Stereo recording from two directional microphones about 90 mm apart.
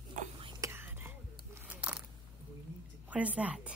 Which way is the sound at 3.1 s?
15° right (ahead or behind).